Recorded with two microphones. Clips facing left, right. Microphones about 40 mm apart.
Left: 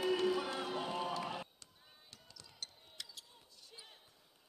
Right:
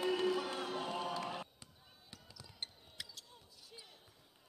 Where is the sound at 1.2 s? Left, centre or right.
Centre.